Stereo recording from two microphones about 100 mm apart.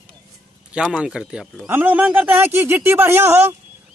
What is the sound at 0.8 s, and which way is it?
Speech, 5° right (ahead or behind).